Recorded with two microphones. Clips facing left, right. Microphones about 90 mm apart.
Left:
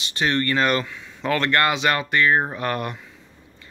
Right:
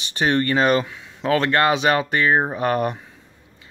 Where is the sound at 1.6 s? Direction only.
25° right (ahead or behind).